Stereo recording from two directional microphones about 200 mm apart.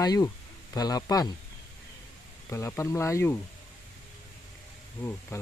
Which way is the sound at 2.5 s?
15° left (ahead or behind).